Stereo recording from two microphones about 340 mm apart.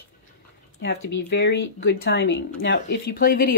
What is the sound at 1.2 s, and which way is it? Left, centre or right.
Speech, left.